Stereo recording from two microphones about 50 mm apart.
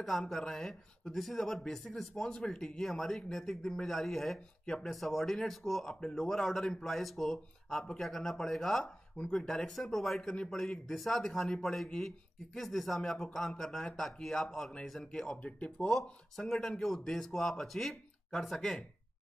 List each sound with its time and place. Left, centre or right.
0.0 s speech: centre
2.9 s speech: centre
10.9 s speech: centre
15.9 s speech: centre